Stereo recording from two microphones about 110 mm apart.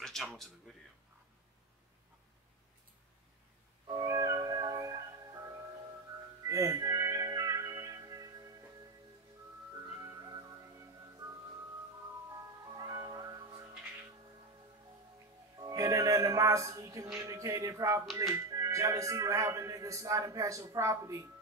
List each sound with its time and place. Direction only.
0.0 s a sound: 5° left (ahead or behind)
3.9 s music: 30° right (ahead or behind)
10.2 s music: 35° right (ahead or behind)
12.7 s music: 35° right (ahead or behind)
15.6 s music: 30° right (ahead or behind)
17.2 s speech: 30° right (ahead or behind)